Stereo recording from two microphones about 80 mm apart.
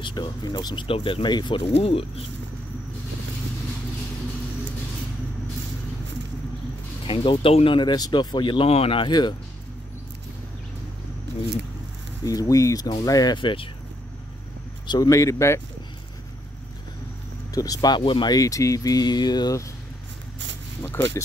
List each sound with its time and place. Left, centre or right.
0.0 s speech: left
7.1 s speech: left
12.3 s speech: left
13.4 s speech: left
15.0 s speech: left
17.6 s speech: left
18.3 s speech: left
20.8 s speech: left